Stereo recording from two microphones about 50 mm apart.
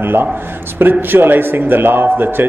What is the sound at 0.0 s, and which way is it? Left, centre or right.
A man's voice, right.